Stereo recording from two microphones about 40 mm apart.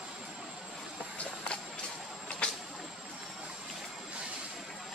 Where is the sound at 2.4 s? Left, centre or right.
Left.